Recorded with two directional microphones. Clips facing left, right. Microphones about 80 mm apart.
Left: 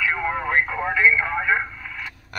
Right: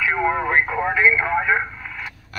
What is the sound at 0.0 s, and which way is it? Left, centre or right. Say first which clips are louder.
Radio: right 4 dB; right.